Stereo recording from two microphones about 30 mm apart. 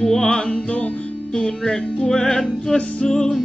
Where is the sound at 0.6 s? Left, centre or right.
Left.